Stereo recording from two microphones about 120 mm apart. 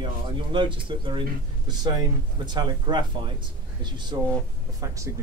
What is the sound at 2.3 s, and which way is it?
Speech, 40° right (ahead or behind).